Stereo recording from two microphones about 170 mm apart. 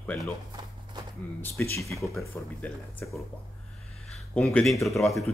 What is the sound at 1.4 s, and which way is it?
Speech, 15° left (ahead or behind).